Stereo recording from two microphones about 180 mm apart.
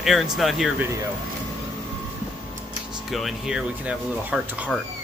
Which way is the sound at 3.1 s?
Centre (ahead or behind).